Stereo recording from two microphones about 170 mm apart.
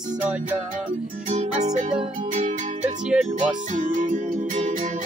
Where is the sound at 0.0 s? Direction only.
50° right (ahead or behind).